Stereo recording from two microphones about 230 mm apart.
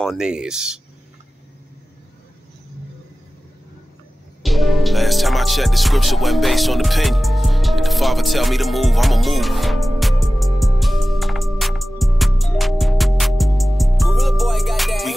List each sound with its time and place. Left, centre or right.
0.0 s speech: centre
4.4 s music: centre